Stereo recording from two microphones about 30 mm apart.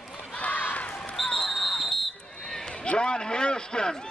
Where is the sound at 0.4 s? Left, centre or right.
Left.